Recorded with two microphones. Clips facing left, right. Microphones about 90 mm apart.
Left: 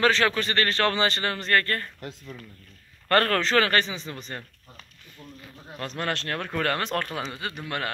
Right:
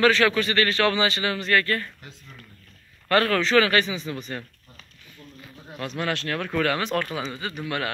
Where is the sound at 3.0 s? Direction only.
45° left (ahead or behind).